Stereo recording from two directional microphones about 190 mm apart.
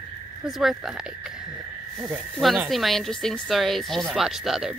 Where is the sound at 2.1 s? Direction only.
Centre (ahead or behind).